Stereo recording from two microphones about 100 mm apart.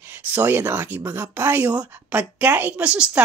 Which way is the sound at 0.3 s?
20° right (ahead or behind).